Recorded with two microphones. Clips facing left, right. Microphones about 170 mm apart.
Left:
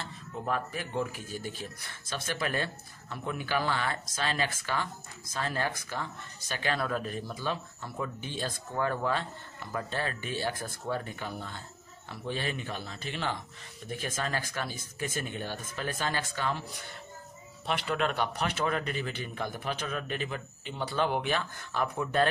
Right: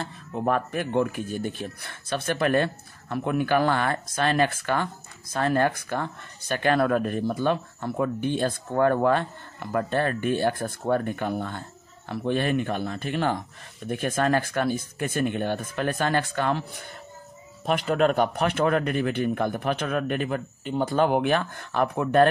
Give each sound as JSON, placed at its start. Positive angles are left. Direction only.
{"t": 0.0, "sound": "speech", "side_deg": -55}
{"t": 17.6, "sound": "speech", "side_deg": -45}